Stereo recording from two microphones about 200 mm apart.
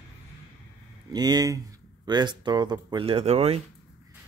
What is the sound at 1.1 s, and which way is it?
Speech, 20° right (ahead or behind).